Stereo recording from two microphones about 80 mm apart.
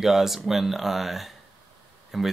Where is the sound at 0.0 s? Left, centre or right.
Centre.